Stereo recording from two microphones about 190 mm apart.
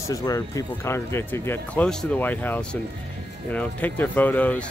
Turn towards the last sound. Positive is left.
turn(degrees=5)  # may be behind; listen again after turning